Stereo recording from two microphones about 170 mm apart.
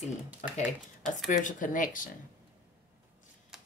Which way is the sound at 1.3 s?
50° left (ahead or behind).